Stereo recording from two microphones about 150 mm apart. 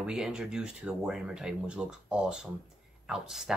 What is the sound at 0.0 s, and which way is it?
Speech, 5° right (ahead or behind).